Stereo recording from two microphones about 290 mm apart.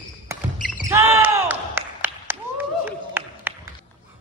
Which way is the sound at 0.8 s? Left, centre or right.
Centre.